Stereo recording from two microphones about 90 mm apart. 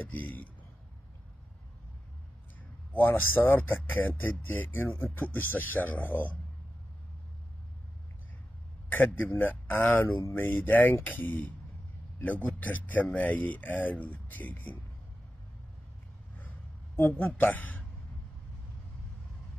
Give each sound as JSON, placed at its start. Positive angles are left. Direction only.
{"t": 0.0, "sound": "a man's voice", "side_deg": 20}
{"t": 3.0, "sound": "speech", "side_deg": 20}
{"t": 8.8, "sound": "a man's voice", "side_deg": 20}
{"t": 16.3, "sound": "a sound", "side_deg": 20}
{"t": 17.4, "sound": "speech", "side_deg": 20}